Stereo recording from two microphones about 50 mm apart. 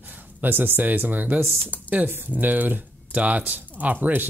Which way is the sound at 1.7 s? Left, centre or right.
Left.